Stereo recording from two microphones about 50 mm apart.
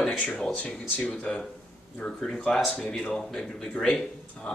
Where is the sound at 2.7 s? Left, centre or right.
Left.